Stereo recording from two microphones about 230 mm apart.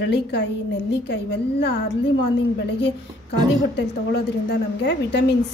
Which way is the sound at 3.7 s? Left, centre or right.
Left.